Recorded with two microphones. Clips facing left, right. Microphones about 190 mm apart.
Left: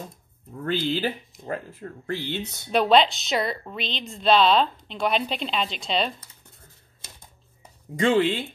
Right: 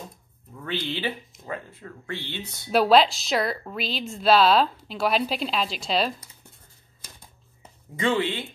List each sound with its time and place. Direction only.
0.6 s speech: 40° left (ahead or behind)
2.7 s a woman's voice: 5° right (ahead or behind)
7.9 s speech: 45° left (ahead or behind)